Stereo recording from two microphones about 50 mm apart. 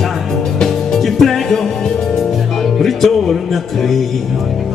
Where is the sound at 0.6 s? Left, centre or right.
Centre.